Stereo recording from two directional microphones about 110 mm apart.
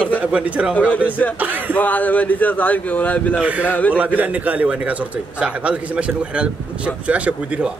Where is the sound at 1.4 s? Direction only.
15° right (ahead or behind).